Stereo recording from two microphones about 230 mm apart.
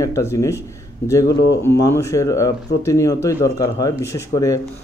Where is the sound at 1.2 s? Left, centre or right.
Left.